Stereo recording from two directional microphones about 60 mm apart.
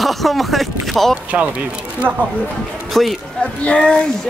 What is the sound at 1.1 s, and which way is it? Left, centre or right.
Speech, right.